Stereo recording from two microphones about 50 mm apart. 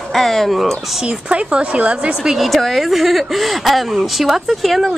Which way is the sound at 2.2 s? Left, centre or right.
Centre.